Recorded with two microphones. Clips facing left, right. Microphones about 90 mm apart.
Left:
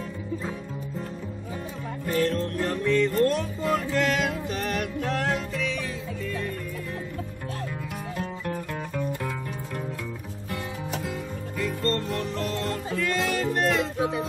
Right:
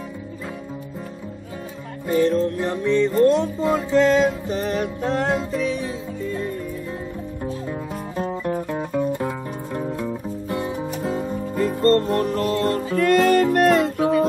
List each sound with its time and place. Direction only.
2.0 s music: 15° right (ahead or behind); by 6.3 s 35° right (ahead or behind)
8.2 s music: 25° right (ahead or behind)
10.5 s music: 30° right (ahead or behind); by 14.1 s 50° right (ahead or behind)